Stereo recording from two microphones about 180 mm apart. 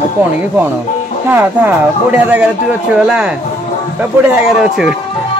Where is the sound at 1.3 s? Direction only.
10° right (ahead or behind).